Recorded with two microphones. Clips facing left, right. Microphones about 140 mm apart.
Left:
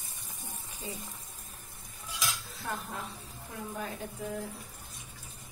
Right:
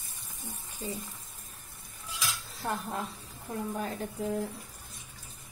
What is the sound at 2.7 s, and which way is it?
Speech, 35° right (ahead or behind).